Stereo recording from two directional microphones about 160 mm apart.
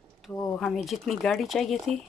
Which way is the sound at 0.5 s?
Centre (ahead or behind).